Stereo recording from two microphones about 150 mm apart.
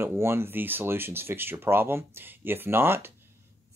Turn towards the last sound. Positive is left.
turn(degrees=-15)  # may be behind; listen again after turning